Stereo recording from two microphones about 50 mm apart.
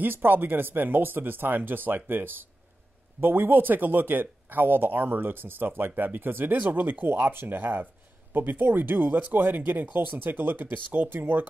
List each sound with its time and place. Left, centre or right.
0.0 s speech: right